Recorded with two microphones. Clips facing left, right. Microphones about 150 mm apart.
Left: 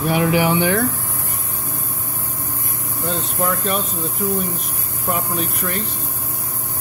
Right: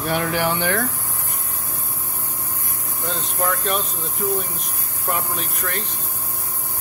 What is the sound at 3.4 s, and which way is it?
Speech, centre (ahead or behind).